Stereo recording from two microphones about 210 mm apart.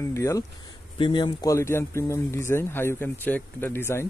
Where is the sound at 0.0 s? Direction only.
15° left (ahead or behind).